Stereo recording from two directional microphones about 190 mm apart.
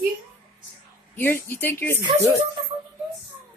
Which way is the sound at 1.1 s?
10° left (ahead or behind).